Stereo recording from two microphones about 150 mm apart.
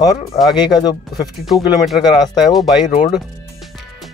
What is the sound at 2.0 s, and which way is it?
Speech, 30° left (ahead or behind).